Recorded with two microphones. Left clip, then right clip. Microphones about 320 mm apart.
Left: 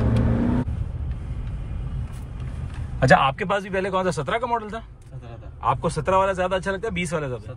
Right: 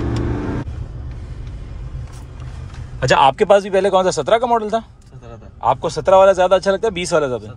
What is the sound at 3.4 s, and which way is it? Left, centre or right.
Speech, centre.